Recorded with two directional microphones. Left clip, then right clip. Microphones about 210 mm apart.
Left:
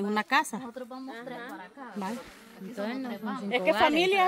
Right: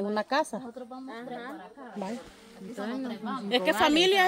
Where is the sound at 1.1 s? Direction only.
10° right (ahead or behind).